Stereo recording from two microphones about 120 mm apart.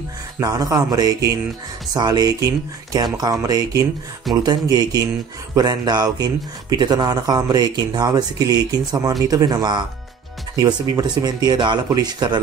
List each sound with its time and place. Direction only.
0.4 s speech: 30° right (ahead or behind)